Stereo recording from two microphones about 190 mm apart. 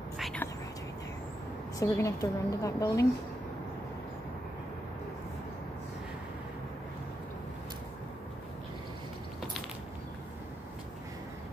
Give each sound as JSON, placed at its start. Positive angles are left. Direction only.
{"t": 0.2, "sound": "whispering", "side_deg": 5}
{"t": 1.8, "sound": "a woman's voice", "side_deg": 15}